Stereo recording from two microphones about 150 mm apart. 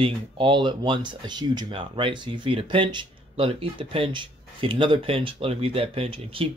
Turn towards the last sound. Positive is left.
turn(degrees=-35)  # may be behind; listen again after turning